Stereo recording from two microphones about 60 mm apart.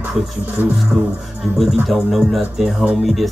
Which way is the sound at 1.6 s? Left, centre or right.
Centre.